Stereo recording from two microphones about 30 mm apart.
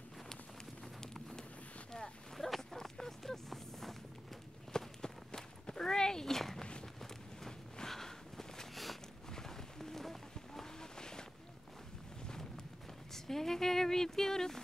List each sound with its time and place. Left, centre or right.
1.0 s wind noise: centre
2.3 s a sound: centre
4.7 s walk: left
6.6 s walk: left
7.9 s a sound: centre
10.8 s vehicle: left
13.1 s speech: centre